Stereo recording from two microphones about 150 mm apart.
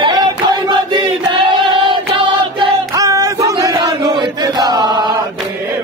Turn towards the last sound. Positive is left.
turn(degrees=-25)  # may be behind; listen again after turning